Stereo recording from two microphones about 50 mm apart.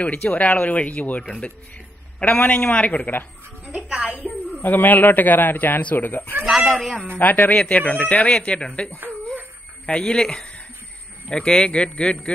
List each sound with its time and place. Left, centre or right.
0.0 s speech: left
2.2 s speech: left
2.5 s speech: centre
3.6 s music: right
4.1 s a man's voice: left
6.4 s speech: centre
6.8 s speech: centre
7.2 s speech: left
9.0 s a sound: right
9.8 s speech: left